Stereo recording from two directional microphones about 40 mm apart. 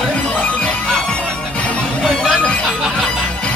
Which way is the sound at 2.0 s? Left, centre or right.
Centre.